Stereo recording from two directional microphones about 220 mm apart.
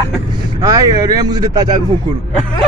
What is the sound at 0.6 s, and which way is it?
Speech, 15° right (ahead or behind).